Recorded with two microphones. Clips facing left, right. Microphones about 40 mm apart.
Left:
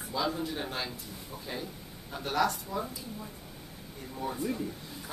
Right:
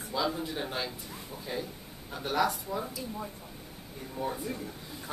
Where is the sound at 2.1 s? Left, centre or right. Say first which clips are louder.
Even; centre.